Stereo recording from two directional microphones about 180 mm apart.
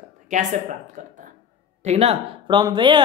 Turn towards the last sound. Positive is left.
turn(degrees=-25)  # may be behind; listen again after turning